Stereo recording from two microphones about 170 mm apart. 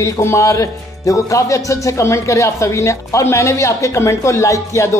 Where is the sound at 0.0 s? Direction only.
15° left (ahead or behind).